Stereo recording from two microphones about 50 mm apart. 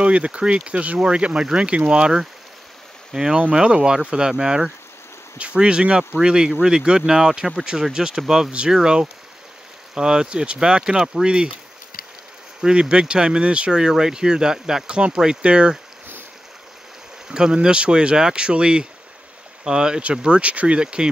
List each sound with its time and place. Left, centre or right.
0.0 s speech: right
12.6 s speech: centre
17.3 s speech: centre